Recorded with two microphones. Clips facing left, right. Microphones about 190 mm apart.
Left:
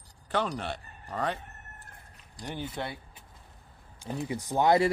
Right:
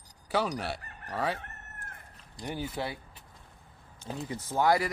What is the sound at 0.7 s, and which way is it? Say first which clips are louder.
Fowl: right 2 dB; 90° right.